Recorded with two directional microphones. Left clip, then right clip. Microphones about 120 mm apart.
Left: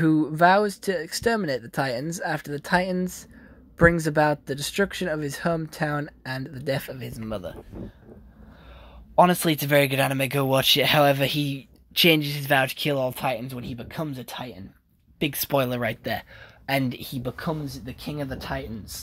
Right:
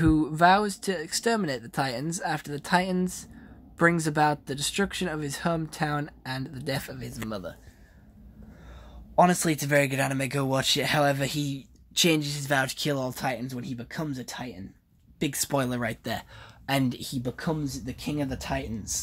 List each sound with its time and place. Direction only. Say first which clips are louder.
0.0 s speech: left 2 dB; 10° left (ahead or behind)
9.2 s speech: left 3 dB; 20° left (ahead or behind); by 18.9 s centre (ahead or behind)